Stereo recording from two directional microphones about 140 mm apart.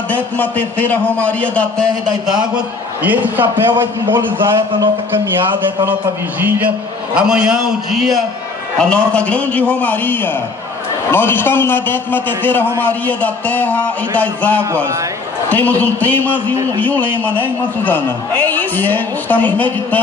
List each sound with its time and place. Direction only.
0.1 s a man's voice: 10° left (ahead or behind)
2.5 s a man's voice: 10° right (ahead or behind)
7.2 s a man's voice: 5° right (ahead or behind); by 14.6 s 10° left (ahead or behind)
14.6 s a man's voice: 20° right (ahead or behind)
15.5 s a man's voice: 10° left (ahead or behind)
17.8 s a man's voice: 15° left (ahead or behind)